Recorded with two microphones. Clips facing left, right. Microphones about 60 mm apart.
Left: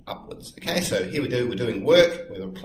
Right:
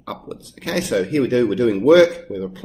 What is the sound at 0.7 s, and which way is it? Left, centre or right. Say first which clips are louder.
Speech: right 5 dB; right.